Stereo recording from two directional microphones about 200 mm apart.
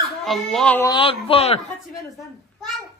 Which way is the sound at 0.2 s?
Centre (ahead or behind).